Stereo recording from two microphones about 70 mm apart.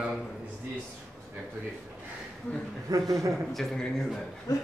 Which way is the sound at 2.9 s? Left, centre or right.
Right.